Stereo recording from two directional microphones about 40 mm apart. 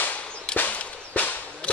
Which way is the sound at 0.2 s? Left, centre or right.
Left.